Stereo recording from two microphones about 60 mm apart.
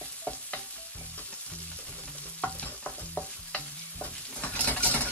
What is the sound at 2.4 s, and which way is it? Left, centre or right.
Stir, left.